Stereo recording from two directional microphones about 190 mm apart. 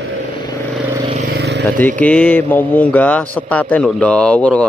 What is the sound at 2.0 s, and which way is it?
A man's voice, 10° left (ahead or behind).